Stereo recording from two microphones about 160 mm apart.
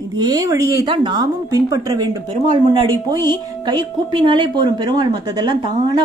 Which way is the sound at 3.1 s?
25° right (ahead or behind).